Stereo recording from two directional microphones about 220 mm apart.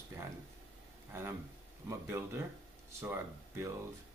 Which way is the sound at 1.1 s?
10° right (ahead or behind).